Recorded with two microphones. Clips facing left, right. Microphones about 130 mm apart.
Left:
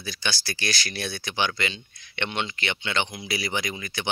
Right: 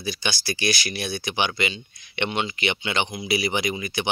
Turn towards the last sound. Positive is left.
turn(degrees=-15)  # may be behind; listen again after turning